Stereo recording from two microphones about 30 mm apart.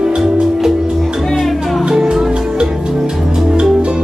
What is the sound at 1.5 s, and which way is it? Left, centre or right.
Music, centre.